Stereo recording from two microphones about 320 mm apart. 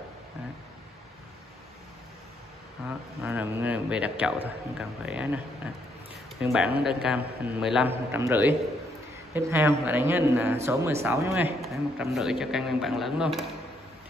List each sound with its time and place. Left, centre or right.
2.9 s a man's voice: centre
6.4 s a man's voice: centre